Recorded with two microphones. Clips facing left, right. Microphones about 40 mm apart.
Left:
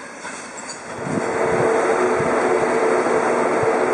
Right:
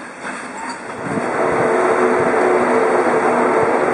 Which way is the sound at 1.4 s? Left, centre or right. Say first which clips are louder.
Right 3 dB; centre.